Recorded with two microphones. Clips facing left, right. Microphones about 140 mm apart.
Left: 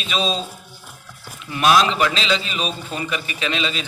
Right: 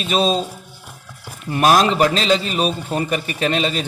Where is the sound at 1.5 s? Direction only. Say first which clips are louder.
Right 2 dB; 45° right (ahead or behind).